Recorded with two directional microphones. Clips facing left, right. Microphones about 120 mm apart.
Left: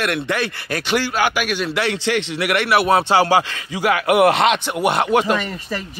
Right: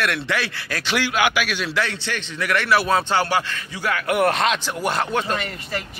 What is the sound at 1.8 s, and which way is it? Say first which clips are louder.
A man's voice: left 8 dB; 90° left.